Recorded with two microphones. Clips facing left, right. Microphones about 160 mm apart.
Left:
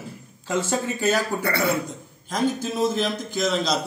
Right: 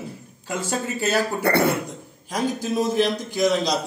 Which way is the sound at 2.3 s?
10° right (ahead or behind).